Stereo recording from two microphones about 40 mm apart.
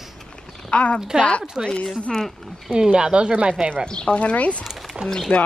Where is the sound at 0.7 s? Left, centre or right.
Left.